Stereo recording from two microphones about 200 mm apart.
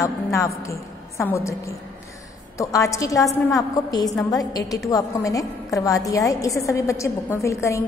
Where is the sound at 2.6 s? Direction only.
15° left (ahead or behind).